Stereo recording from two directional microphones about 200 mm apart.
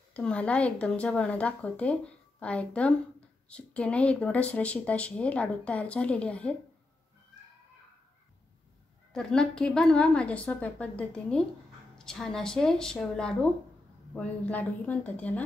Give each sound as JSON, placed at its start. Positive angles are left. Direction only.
{"t": 0.1, "sound": "speech", "side_deg": 5}
{"t": 9.1, "sound": "a woman's voice", "side_deg": 5}